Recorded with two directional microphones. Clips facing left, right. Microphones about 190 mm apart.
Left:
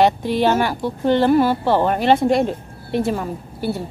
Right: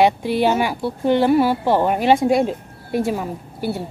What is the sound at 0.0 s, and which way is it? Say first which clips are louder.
A woman's voice: even; 10° right (ahead or behind).